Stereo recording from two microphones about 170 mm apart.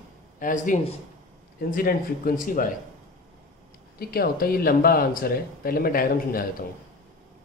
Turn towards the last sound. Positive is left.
turn(degrees=60)  # may be behind; listen again after turning